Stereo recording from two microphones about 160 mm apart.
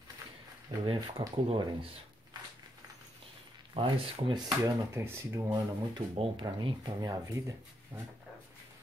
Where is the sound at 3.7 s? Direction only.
30° right (ahead or behind).